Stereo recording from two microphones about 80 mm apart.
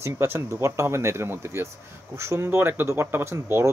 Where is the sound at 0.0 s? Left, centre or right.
Right.